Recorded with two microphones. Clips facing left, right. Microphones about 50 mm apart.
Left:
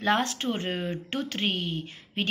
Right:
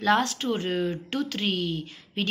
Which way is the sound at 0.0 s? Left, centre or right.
Left.